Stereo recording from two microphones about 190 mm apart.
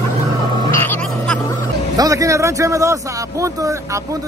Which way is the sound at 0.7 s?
10° left (ahead or behind).